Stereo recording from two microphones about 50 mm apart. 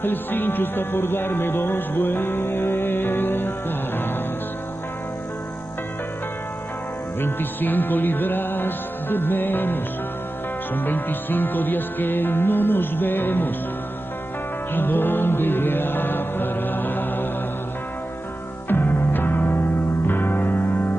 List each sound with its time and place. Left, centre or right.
0.0 s speech: left
7.2 s music: left
14.7 s music: left
18.7 s music: left